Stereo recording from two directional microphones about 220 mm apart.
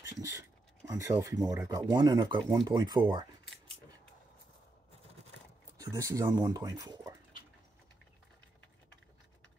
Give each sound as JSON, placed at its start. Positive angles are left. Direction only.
{"t": 0.2, "sound": "speech", "side_deg": -15}
{"t": 5.8, "sound": "speech", "side_deg": -15}